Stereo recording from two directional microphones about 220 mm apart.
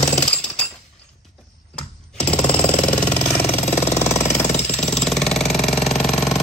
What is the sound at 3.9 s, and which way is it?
Jackhammer, 10° left (ahead or behind).